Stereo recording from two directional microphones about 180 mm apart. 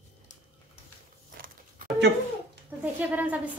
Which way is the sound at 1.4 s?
55° right (ahead or behind).